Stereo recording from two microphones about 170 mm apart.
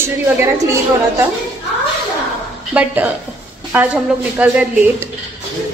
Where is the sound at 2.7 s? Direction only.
10° right (ahead or behind).